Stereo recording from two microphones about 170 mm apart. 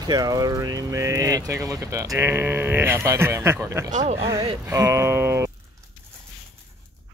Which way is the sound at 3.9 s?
40° right (ahead or behind).